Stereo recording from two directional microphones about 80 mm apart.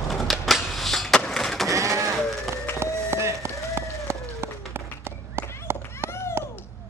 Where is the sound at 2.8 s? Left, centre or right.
Right.